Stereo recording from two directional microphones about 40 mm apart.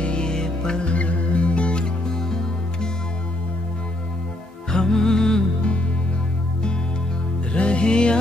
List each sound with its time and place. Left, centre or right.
0.0 s music: left
2.1 s music: centre
4.6 s music: centre
7.5 s music: left